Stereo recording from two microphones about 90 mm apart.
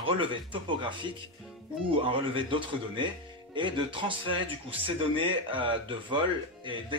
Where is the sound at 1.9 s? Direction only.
75° right (ahead or behind).